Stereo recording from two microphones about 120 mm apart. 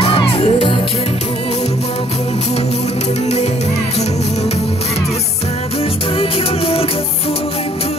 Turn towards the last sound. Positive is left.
turn(degrees=55)  # may be behind; listen again after turning